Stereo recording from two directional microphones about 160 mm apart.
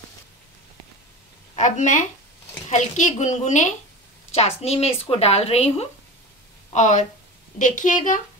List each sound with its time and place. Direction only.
1.5 s a woman's voice: 50° left (ahead or behind)